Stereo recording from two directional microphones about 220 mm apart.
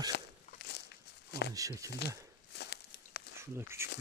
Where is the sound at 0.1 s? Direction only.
50° left (ahead or behind).